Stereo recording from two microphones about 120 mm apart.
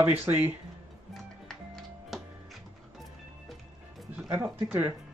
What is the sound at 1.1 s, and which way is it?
Music, centre (ahead or behind).